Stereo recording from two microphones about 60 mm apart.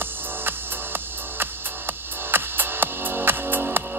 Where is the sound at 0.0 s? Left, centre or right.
Right.